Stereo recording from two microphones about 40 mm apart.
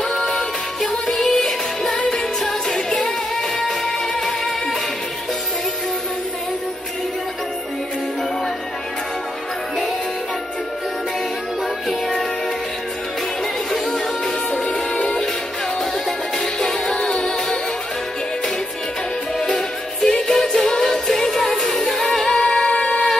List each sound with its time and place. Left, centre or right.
0.1 s music: centre
2.0 s music: left
2.4 s music: centre
16.5 s music: centre
19.4 s music: centre
22.3 s music: centre